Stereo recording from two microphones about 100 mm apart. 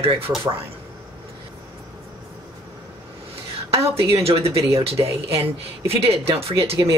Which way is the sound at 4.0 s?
75° right (ahead or behind).